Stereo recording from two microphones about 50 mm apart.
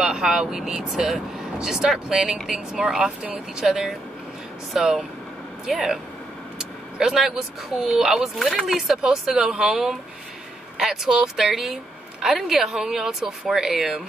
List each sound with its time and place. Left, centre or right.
0.0 s speech: centre
2.7 s speech: centre